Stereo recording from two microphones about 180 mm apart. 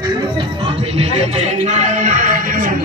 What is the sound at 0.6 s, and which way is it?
Music, 35° right (ahead or behind).